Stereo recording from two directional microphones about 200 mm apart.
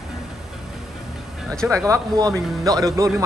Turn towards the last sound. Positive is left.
turn(degrees=-15)  # may be behind; listen again after turning